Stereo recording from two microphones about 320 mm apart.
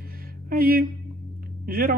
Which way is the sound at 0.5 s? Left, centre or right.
Right.